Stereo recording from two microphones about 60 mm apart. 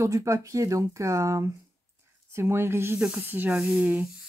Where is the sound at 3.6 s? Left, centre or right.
Centre.